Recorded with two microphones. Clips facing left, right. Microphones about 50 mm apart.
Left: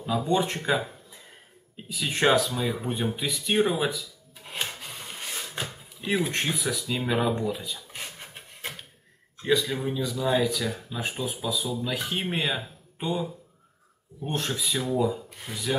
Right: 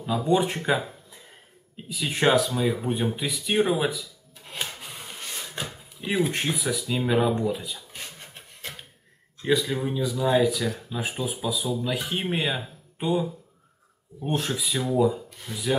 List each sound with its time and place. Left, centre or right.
0.0 s speech: centre
1.9 s speech: centre
4.5 s drawer open or close: centre
7.1 s speech: centre
7.9 s a sound: centre
9.4 s speech: centre
15.5 s rub: centre